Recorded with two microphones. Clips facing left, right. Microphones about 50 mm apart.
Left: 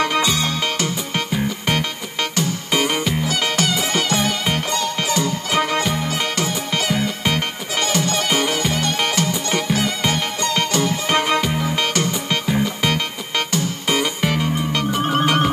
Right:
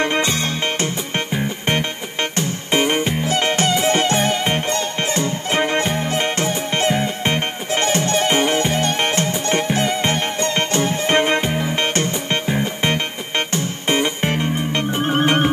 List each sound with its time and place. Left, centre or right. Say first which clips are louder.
0.0 s music: even; right